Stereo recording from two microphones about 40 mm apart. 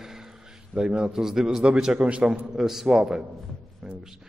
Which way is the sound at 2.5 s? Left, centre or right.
Centre.